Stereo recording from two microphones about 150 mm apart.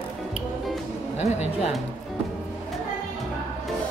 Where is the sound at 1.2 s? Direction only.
45° left (ahead or behind).